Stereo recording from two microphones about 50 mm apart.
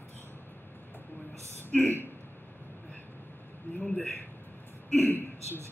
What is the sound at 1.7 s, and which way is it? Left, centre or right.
Speech, left.